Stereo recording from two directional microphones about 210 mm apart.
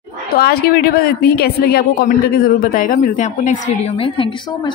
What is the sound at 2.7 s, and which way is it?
Speech, 35° left (ahead or behind).